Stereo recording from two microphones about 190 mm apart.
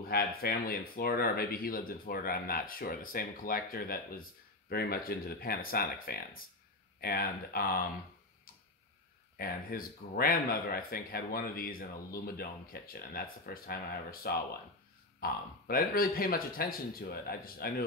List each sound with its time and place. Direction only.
0.0 s speech: 50° left (ahead or behind)
9.4 s speech: 50° left (ahead or behind)